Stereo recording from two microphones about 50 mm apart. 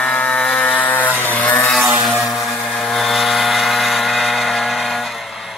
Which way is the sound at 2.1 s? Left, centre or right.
Centre.